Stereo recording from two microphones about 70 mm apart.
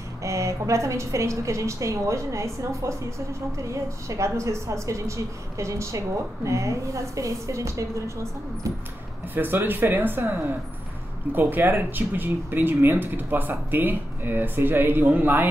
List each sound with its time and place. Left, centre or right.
0.2 s a woman's voice: right
9.3 s speech: right
11.3 s speech: right